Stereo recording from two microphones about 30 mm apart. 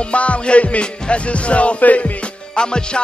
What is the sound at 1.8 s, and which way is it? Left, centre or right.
Music, left.